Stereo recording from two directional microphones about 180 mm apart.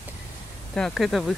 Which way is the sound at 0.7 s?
5° left (ahead or behind).